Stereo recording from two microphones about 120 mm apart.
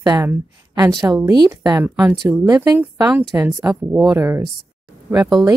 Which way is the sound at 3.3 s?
20° right (ahead or behind).